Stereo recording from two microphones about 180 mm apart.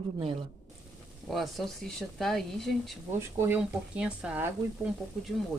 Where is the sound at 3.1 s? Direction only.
15° right (ahead or behind).